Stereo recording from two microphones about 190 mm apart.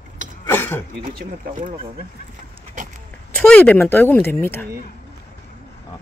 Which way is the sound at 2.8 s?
40° right (ahead or behind).